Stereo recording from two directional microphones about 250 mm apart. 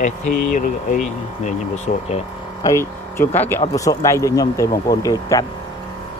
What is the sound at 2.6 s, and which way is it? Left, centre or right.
Speech, centre.